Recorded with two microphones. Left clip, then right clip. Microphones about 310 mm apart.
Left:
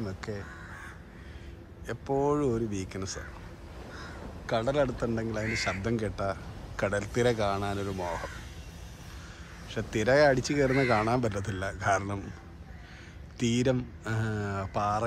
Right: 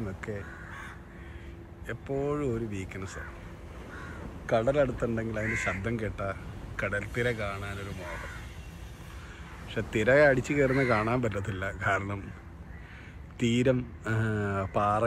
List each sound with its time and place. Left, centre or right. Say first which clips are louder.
0.0 s speech: even; centre
1.9 s speech: left 4 dB; centre
4.5 s speech: right 2 dB; centre
9.8 s speech: right 1 dB; centre
13.4 s speech: right 2 dB; centre